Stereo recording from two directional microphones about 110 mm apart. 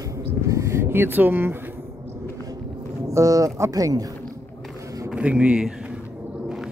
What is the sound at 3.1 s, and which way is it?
Speech, 30° right (ahead or behind).